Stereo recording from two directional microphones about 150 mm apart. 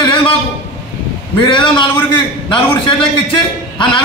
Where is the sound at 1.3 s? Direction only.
30° left (ahead or behind).